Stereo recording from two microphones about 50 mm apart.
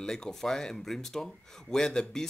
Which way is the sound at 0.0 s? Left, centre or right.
Centre.